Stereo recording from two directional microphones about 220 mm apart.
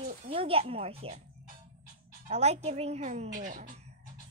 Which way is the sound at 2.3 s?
30° right (ahead or behind).